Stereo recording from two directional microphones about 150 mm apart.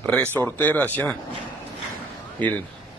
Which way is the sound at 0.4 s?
10° left (ahead or behind).